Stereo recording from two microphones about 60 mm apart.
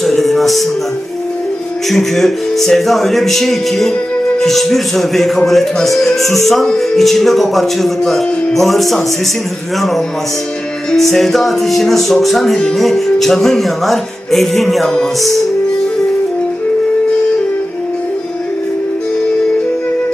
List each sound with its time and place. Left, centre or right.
0.0 s music: centre
1.9 s speech: centre